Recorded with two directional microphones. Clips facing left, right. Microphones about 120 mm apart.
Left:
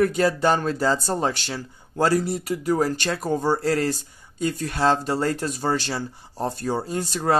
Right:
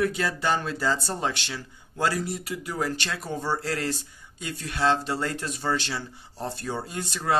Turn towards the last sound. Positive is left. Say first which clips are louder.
# left 4 dB
turn(degrees=40)  # may be behind; listen again after turning